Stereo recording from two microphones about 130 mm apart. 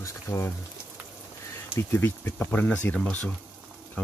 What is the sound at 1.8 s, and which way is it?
Speech, 20° left (ahead or behind).